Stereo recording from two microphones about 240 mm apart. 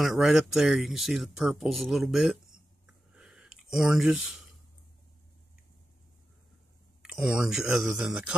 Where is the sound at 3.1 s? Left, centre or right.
Centre.